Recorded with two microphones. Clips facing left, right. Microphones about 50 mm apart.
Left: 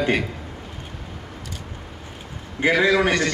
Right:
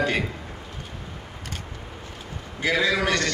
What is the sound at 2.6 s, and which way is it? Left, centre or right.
Speech, left.